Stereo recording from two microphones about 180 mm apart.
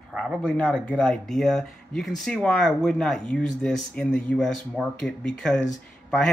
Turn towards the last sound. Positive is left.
turn(degrees=5)  # may be behind; listen again after turning